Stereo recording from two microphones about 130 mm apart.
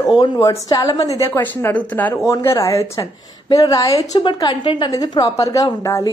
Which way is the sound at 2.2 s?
25° left (ahead or behind).